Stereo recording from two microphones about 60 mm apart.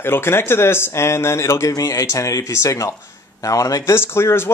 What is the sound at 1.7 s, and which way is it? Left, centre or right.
Speech, left.